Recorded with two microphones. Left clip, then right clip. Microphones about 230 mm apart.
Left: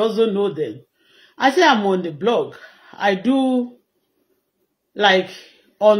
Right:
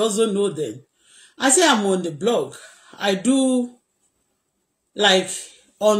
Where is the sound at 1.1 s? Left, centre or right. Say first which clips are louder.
Left 2 dB; centre.